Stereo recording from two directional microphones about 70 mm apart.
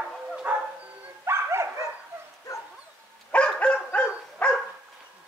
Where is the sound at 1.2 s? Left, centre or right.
Right.